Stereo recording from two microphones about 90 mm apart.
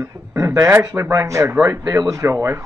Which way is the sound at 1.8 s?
40° right (ahead or behind).